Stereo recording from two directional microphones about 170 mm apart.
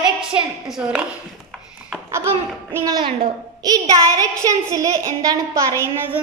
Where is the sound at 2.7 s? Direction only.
20° right (ahead or behind).